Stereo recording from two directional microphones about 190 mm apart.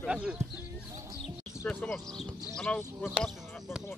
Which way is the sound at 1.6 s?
Centre (ahead or behind).